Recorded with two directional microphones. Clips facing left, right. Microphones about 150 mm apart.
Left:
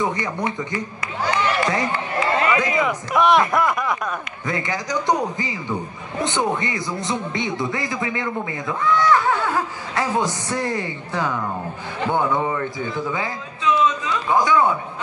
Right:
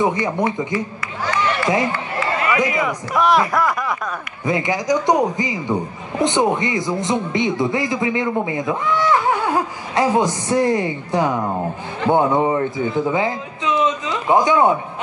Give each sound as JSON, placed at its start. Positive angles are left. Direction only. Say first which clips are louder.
{"t": 0.0, "sound": "speech", "louder": "right 5 dB", "side_deg": -20}
{"t": 2.1, "sound": "run", "louder": "left 1 dB", "side_deg": 25}
{"t": 2.6, "sound": "a man's voice", "louder": "right 1 dB", "side_deg": -15}
{"t": 3.1, "sound": "speech", "louder": "even", "side_deg": 0}
{"t": 4.5, "sound": "speech", "louder": "right 7 dB", "side_deg": -15}
{"t": 12.8, "sound": "a sound", "louder": "right 6 dB", "side_deg": -20}